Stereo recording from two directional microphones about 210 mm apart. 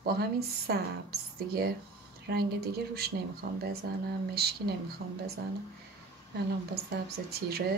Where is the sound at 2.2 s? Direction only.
50° right (ahead or behind).